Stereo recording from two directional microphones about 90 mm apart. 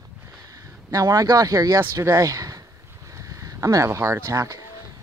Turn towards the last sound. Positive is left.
turn(degrees=-40)  # may be behind; listen again after turning